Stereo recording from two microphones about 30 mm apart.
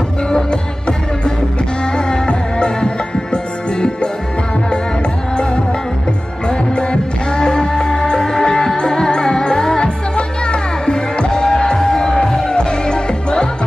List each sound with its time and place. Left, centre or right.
0.3 s music: left
6.7 s music: left
10.1 s music: left